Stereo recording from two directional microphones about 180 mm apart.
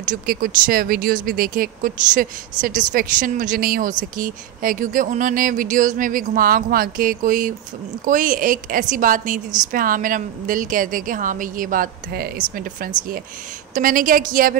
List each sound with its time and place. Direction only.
0.0 s speech: 50° right (ahead or behind)
13.7 s speech: 50° right (ahead or behind)